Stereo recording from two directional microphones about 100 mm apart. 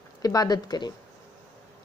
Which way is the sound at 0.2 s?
40° left (ahead or behind).